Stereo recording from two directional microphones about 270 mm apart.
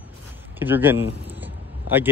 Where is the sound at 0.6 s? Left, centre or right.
Centre.